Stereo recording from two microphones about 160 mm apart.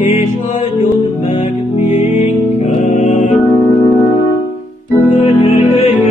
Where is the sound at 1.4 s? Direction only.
45° left (ahead or behind).